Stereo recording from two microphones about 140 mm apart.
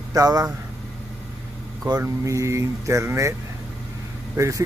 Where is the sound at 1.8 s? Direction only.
25° right (ahead or behind).